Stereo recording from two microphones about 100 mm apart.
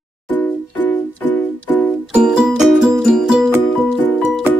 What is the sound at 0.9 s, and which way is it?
Music, 15° left (ahead or behind).